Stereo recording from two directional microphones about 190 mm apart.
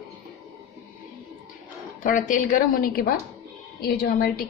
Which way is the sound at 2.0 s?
45° left (ahead or behind).